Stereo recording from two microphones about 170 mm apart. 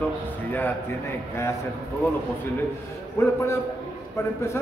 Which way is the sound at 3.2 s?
15° left (ahead or behind).